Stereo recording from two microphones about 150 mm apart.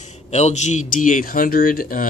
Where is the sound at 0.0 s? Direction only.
50° left (ahead or behind).